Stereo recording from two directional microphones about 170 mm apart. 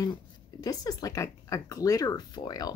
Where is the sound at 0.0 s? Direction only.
20° left (ahead or behind).